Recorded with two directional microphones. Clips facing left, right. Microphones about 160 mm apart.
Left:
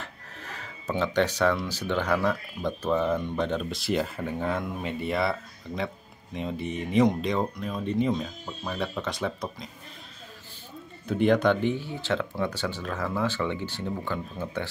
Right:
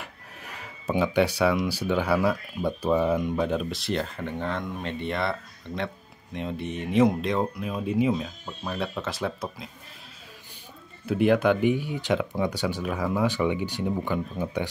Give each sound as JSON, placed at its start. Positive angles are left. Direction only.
{"t": 0.0, "sound": "speech", "side_deg": -10}
{"t": 11.1, "sound": "speech", "side_deg": -5}